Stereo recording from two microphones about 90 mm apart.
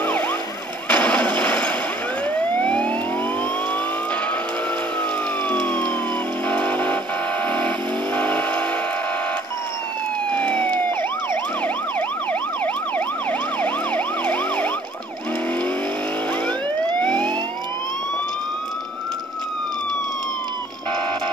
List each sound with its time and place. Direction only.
0.0 s emergency vehicle: 15° left (ahead or behind)
0.8 s artillery fire: 15° left (ahead or behind)
2.3 s emergency vehicle: 15° left (ahead or behind)
5.5 s emergency vehicle: 15° left (ahead or behind)
6.4 s vehicle: 15° left (ahead or behind)
10.3 s emergency vehicle: 15° left (ahead or behind)
12.3 s emergency vehicle: 15° left (ahead or behind)
17.0 s emergency vehicle: 60° right (ahead or behind)